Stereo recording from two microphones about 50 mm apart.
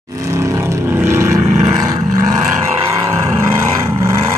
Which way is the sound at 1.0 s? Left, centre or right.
Right.